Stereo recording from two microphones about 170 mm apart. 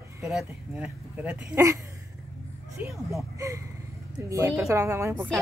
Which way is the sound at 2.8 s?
10° right (ahead or behind).